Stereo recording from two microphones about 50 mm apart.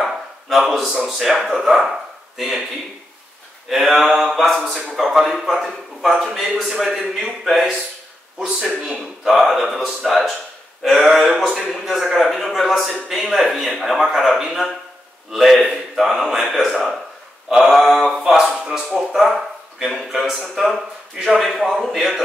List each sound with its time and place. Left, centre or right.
0.0 s a sound: centre
0.7 s a man's voice: centre
3.6 s a man's voice: centre